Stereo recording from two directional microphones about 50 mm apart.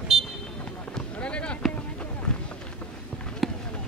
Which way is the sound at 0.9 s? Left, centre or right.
Left.